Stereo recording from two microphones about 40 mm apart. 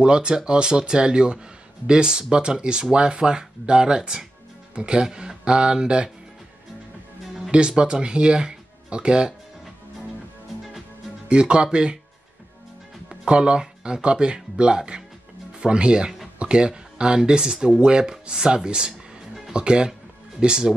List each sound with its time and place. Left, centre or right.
0.0 s speech: right
7.5 s speech: right
11.2 s speech: right
13.2 s speech: right